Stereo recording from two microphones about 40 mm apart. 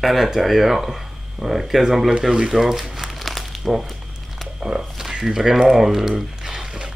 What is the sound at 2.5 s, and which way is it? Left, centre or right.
Crumpling, centre.